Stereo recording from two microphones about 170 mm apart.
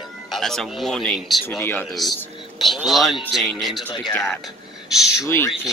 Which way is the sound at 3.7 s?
25° left (ahead or behind).